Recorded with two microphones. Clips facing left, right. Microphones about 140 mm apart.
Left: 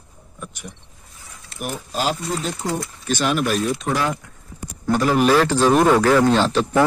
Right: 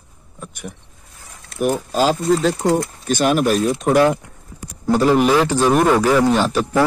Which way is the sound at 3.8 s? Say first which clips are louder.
Right 8 dB; 55° right (ahead or behind).